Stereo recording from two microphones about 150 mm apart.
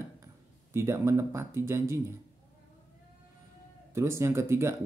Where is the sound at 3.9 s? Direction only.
20° right (ahead or behind).